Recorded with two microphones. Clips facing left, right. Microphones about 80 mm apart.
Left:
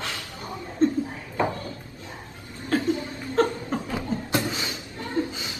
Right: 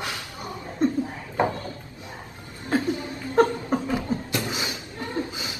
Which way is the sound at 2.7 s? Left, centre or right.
Centre.